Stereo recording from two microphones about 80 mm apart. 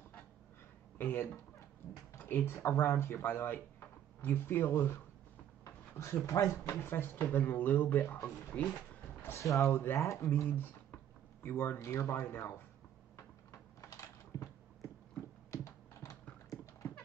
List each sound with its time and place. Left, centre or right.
0.9 s speech: left
5.6 s a sound: left
6.2 s speech: left; by 8.7 s centre
9.2 s speech: left
10.3 s speech: left
11.8 s speech: left
13.1 s a sound: left
15.5 s typing: left
16.5 s horse: left